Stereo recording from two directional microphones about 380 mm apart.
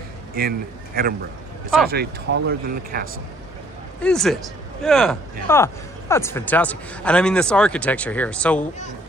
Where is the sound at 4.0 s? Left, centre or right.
Centre.